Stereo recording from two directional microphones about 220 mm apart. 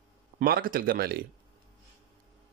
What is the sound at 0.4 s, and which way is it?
Speech, 40° right (ahead or behind).